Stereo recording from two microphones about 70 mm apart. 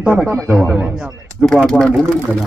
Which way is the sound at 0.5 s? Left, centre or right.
Centre.